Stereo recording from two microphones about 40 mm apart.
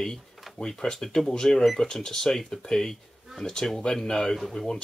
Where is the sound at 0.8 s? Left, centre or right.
Left.